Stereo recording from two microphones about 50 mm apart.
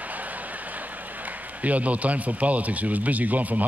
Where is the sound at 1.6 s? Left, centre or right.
Right.